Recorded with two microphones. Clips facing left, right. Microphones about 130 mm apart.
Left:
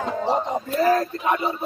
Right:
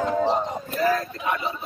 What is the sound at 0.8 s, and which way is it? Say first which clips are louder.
Speech: left 3 dB; 40° left (ahead or behind).